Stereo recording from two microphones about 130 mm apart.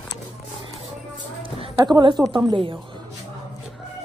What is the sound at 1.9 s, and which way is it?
Speech, 30° right (ahead or behind).